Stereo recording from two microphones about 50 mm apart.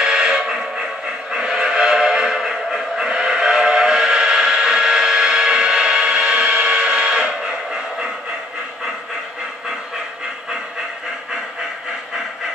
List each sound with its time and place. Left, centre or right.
0.0 s music: centre
1.3 s train whistle: centre
6.5 s train: right